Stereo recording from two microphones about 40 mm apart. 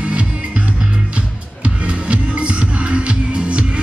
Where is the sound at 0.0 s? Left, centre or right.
Right.